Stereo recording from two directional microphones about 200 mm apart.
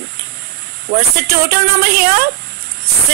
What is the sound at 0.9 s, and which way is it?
A woman's voice, 40° right (ahead or behind).